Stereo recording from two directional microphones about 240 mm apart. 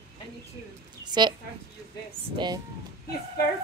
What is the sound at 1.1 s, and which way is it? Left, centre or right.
Speech, centre.